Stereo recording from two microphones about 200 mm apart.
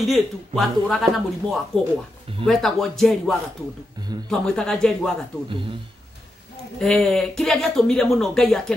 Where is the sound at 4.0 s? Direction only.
20° right (ahead or behind).